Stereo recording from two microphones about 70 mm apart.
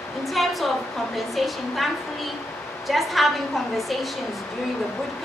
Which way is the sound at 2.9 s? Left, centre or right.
Centre.